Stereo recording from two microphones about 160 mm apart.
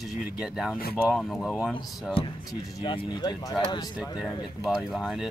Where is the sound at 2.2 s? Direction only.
35° left (ahead or behind).